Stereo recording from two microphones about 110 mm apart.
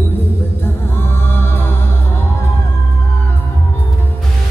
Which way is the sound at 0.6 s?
20° left (ahead or behind).